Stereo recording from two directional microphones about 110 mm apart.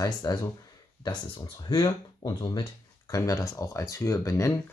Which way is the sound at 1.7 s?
40° left (ahead or behind).